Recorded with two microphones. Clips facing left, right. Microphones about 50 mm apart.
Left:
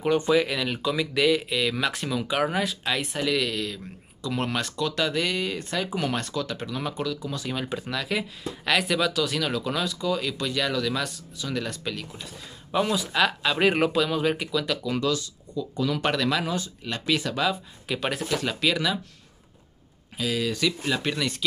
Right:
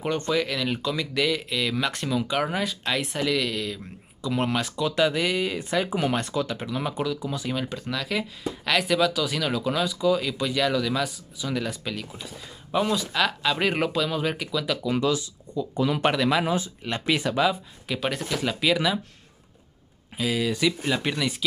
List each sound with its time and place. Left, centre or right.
0.0 s speech: centre
15.0 s speech: centre
17.4 s speech: centre
20.2 s speech: centre